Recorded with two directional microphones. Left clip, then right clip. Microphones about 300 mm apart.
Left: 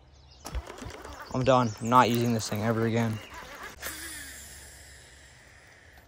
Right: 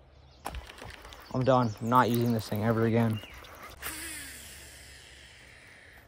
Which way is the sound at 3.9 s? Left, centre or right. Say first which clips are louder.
Even; right.